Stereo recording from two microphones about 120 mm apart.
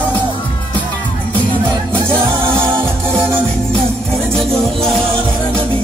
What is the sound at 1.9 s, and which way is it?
Music, 10° left (ahead or behind).